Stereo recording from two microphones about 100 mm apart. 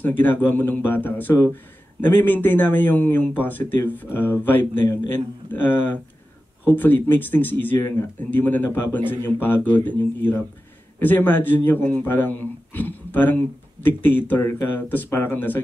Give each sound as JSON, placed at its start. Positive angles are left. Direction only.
{"t": 0.0, "sound": "speech", "side_deg": 20}